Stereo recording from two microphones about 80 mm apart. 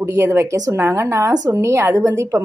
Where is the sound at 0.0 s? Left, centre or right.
Right.